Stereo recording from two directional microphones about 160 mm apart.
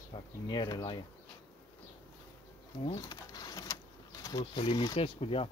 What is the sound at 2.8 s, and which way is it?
Drawer open or close, 25° left (ahead or behind).